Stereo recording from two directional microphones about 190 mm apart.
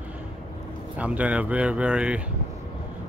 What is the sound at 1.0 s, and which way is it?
Speech, 5° right (ahead or behind).